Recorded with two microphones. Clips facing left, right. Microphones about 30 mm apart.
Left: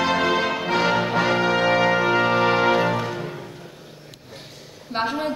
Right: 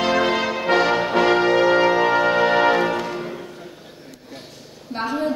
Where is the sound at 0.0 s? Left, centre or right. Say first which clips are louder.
Right 1 dB; right.